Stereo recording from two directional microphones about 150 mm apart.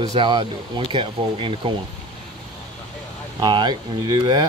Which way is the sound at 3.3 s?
30° right (ahead or behind).